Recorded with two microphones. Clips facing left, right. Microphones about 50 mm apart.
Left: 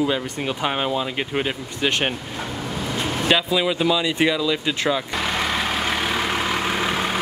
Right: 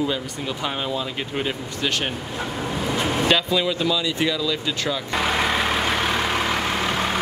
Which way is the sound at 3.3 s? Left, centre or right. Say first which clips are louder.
Left 4 dB; centre.